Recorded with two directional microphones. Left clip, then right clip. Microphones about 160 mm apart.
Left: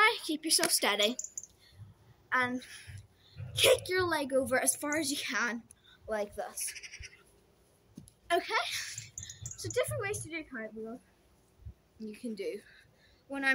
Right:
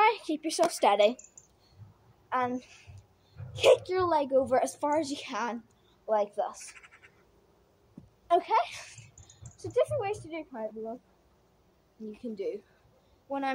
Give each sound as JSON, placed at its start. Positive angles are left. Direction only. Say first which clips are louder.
{"t": 0.0, "sound": "a woman's voice", "louder": "right 2 dB", "side_deg": 15}
{"t": 2.2, "sound": "a woman's voice", "louder": "right 1 dB", "side_deg": 15}
{"t": 8.3, "sound": "speech", "louder": "right 5 dB", "side_deg": 10}
{"t": 12.1, "sound": "a woman's voice", "louder": "right 3 dB", "side_deg": 5}